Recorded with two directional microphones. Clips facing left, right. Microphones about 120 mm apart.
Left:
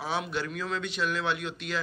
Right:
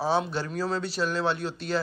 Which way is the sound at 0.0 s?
30° right (ahead or behind).